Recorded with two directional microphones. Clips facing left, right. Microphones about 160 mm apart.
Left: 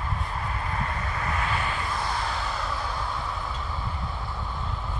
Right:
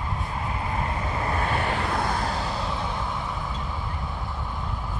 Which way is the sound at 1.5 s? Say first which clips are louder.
Right 4 dB; 55° right (ahead or behind).